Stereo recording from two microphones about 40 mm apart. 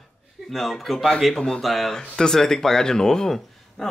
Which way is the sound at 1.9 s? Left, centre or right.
Centre.